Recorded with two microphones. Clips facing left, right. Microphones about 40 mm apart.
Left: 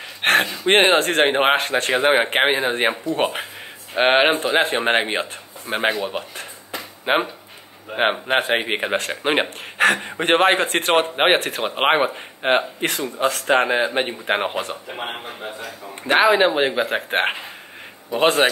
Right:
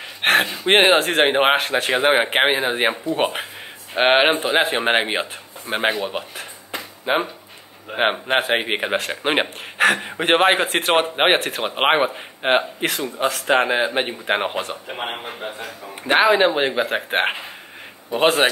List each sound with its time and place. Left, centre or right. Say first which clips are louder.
0.2 s a man's voice: even; centre
7.1 s speech: left 1 dB; left
7.9 s speech: even; centre
15.2 s a man's voice: right 1 dB; right
16.0 s speech: even; centre